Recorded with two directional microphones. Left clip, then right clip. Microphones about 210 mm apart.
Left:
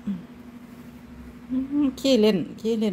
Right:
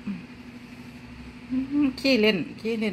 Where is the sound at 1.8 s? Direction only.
20° left (ahead or behind).